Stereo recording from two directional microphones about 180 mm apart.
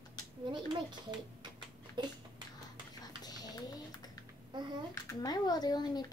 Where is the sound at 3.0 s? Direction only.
20° left (ahead or behind).